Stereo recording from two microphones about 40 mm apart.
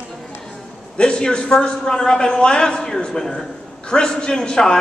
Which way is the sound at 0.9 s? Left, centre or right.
Left.